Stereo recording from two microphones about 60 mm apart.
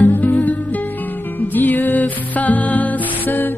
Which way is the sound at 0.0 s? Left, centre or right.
Left.